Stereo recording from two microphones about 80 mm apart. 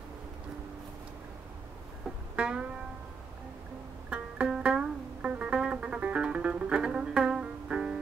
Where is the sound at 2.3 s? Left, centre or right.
Centre.